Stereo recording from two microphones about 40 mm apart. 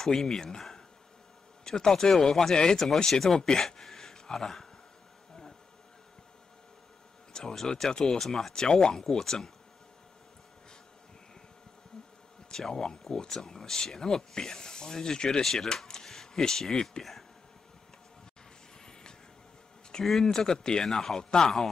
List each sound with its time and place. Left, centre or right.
0.0 s speech: centre
0.6 s a sound: centre
1.6 s speech: centre
7.3 s speech: centre
12.4 s speech: centre
20.1 s speech: centre